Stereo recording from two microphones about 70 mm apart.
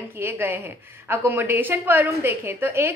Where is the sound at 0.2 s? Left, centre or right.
Right.